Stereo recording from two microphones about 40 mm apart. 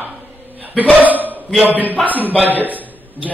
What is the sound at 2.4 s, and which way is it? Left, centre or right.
Speech, right.